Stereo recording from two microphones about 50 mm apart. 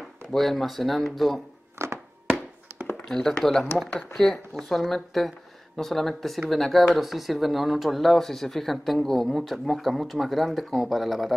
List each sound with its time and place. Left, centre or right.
0.3 s speech: centre
1.8 s a sound: right
3.1 s speech: centre
7.0 s speech: centre